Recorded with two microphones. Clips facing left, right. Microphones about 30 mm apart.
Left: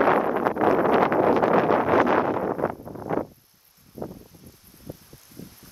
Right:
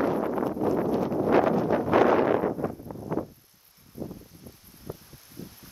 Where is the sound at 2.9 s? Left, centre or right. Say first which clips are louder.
Left 4 dB; left.